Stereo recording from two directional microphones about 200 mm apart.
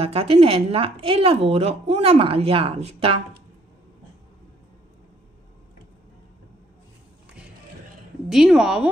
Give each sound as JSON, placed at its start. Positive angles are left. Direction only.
{"t": 0.0, "sound": "a woman's voice", "side_deg": -30}
{"t": 8.3, "sound": "a woman's voice", "side_deg": -5}